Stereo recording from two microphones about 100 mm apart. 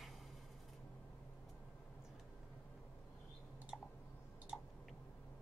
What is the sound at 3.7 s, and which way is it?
Clicking, 15° right (ahead or behind).